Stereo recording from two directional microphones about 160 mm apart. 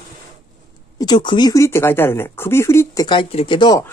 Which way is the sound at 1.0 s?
30° left (ahead or behind).